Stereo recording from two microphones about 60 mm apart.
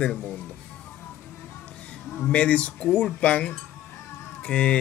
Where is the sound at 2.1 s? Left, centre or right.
Centre.